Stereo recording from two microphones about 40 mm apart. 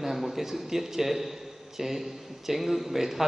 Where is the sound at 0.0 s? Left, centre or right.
Centre.